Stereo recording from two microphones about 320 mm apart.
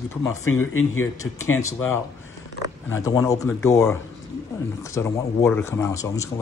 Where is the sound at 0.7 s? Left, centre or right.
Left.